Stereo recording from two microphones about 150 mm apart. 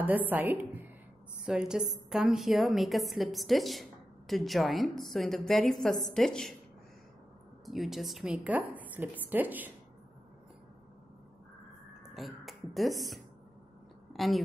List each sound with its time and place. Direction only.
0.0 s a woman's voice: 10° right (ahead or behind)
7.6 s a woman's voice: centre (ahead or behind)
12.1 s a woman's voice: centre (ahead or behind)